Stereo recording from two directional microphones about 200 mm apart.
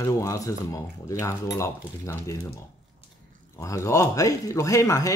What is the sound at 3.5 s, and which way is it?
Speech, 15° left (ahead or behind).